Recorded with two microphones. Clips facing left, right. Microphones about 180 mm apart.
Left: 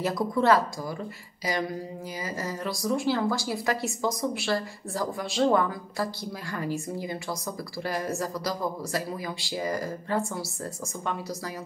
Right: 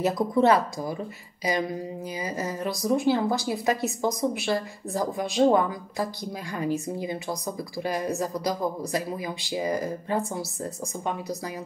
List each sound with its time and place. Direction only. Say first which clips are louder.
0.0 s a woman's voice: right 3 dB; 20° right (ahead or behind)